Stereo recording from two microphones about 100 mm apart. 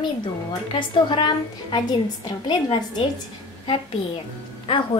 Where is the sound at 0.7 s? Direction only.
55° left (ahead or behind).